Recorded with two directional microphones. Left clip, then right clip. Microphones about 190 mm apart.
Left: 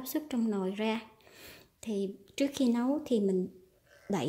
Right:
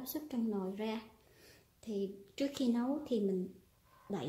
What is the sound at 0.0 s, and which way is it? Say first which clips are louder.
A woman's voice: left 6 dB; 30° left (ahead or behind).